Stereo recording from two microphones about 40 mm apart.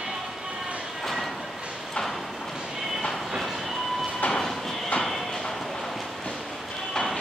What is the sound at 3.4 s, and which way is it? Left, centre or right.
Train, centre.